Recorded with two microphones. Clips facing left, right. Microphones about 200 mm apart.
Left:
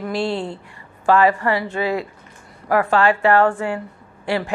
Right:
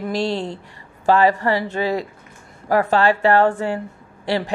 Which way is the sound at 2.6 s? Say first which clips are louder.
Even; 25° right (ahead or behind).